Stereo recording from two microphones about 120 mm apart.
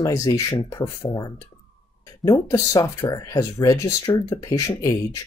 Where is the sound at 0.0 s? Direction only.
25° left (ahead or behind).